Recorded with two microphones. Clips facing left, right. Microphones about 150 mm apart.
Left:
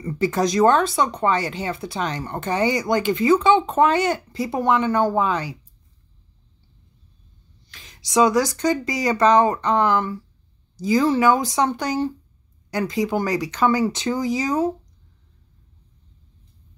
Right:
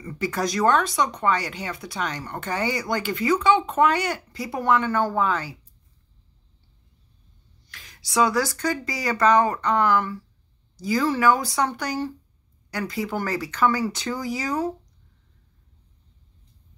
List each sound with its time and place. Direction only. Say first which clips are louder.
0.0 s speech: left 5 dB; 30° left (ahead or behind)
7.7 s speech: left 4 dB; 20° left (ahead or behind)